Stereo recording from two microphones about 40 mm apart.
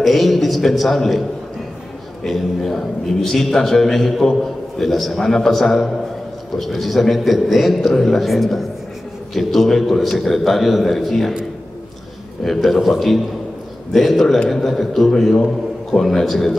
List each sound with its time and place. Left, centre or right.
0.0 s a man's voice: centre
2.2 s a man's voice: centre
12.4 s a man's voice: centre